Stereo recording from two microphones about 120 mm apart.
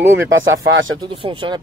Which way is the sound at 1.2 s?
45° right (ahead or behind).